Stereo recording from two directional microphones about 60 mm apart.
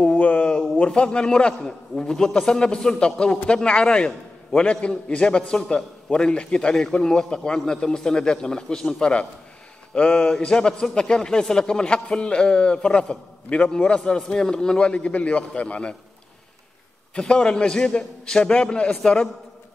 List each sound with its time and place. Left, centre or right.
0.0 s a man's voice: centre
17.1 s a man's voice: centre